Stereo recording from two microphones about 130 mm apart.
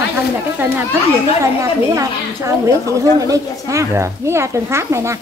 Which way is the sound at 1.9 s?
25° right (ahead or behind).